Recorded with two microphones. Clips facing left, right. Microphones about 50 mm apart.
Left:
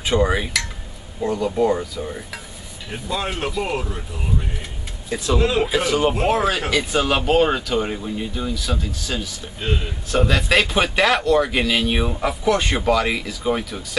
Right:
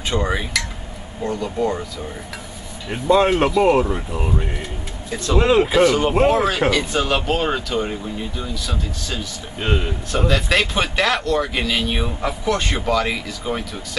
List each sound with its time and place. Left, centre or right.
0.0 s speech: centre
2.9 s speech: right
3.4 s speech: centre
3.7 s speech: right
5.1 s speech: centre
5.4 s speech: right
5.7 s speech: centre